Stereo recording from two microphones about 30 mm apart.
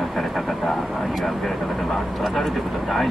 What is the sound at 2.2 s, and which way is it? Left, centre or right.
Speech, centre.